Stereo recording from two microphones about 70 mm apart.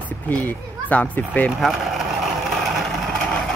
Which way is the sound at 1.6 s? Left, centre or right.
Centre.